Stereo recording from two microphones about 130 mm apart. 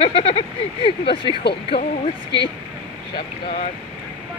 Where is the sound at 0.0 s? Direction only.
50° left (ahead or behind).